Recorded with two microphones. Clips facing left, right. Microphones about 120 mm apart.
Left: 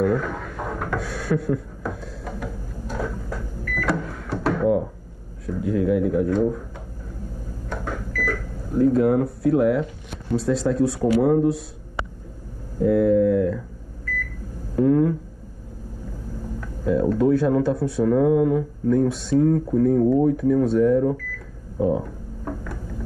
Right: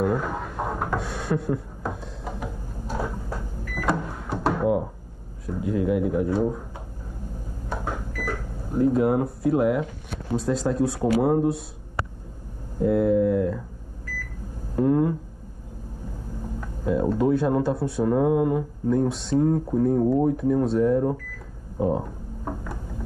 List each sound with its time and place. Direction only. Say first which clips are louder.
0.0 s drawer open or close: left 2 dB; 5° right (ahead or behind)
1.8 s a sound: left 1 dB; 10° right (ahead or behind)
5.6 s speech: left 3 dB; centre (ahead or behind)
7.7 s microwave oven: left 1 dB; 10° right (ahead or behind)
10.4 s speech: left 3 dB; centre (ahead or behind)
14.8 s speech: left 3 dB; 5° right (ahead or behind)
16.6 s a sound: left 3 dB; 5° right (ahead or behind)
17.2 s speech: left 3 dB; centre (ahead or behind)
22.4 s a sound: left 1 dB; 15° right (ahead or behind)